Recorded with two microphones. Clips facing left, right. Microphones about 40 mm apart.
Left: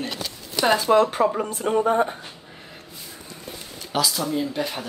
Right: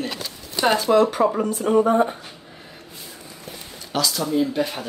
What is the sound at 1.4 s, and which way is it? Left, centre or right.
Speech, left.